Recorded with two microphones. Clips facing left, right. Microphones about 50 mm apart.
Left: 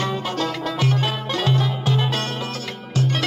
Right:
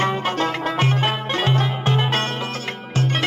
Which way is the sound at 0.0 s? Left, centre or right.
Right.